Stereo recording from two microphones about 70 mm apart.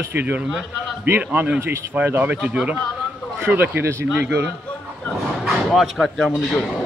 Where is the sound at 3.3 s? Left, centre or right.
Right.